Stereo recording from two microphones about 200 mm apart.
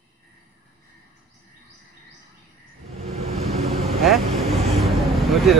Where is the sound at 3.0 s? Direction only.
30° right (ahead or behind).